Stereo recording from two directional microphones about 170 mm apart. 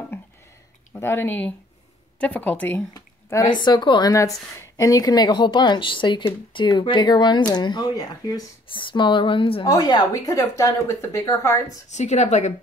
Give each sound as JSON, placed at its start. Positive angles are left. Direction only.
{"t": 0.9, "sound": "a woman's voice", "side_deg": 15}
{"t": 2.9, "sound": "speech", "side_deg": 20}
{"t": 11.9, "sound": "a woman's voice", "side_deg": 40}